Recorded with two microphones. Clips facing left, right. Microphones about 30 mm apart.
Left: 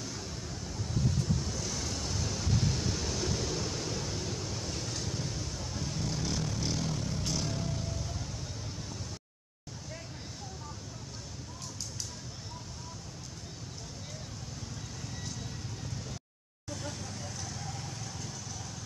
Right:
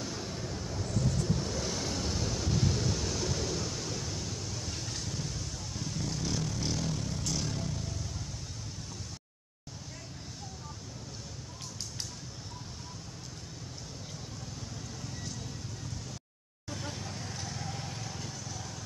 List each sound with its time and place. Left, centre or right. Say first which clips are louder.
0.0 s vehicle: right 3 dB; centre
16.6 s vehicle: even; centre